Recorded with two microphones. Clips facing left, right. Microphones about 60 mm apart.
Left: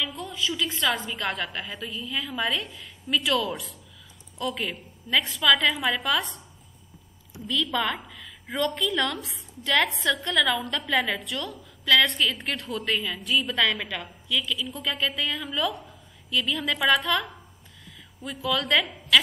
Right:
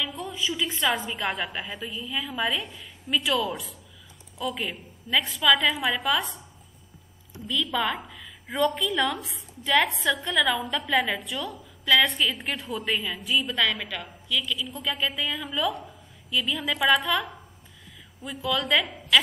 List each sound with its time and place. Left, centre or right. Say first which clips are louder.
0.0 s a sound: even; centre
0.5 s a woman's voice: even; centre
7.4 s a woman's voice: even; centre
18.4 s a woman's voice: even; centre